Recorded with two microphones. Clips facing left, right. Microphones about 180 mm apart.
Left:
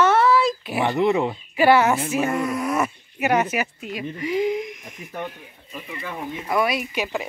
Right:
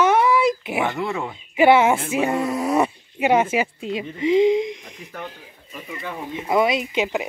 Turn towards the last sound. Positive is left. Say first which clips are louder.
# right 3 dB
turn(degrees=-20)  # may be behind; listen again after turning